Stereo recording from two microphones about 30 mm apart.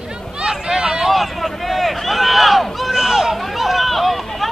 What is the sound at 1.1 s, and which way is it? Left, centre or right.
Run, centre.